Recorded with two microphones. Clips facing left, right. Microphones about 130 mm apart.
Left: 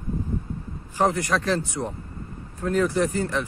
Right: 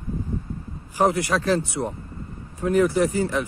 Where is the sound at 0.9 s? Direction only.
10° right (ahead or behind).